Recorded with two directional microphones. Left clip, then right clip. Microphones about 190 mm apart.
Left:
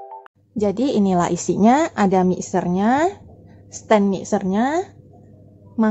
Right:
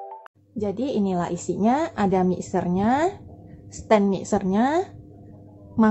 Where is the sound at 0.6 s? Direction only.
20° left (ahead or behind).